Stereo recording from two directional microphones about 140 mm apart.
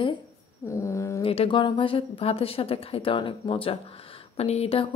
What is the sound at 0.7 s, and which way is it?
Speech, 20° left (ahead or behind).